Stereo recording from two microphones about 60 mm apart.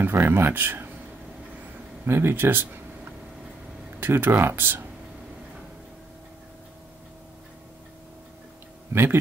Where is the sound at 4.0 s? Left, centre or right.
Right.